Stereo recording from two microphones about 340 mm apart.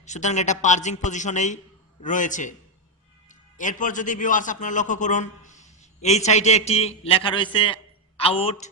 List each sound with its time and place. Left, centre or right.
0.0 s a man's voice: left